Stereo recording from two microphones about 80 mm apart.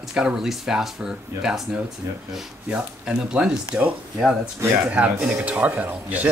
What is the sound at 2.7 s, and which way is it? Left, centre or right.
Speech, centre.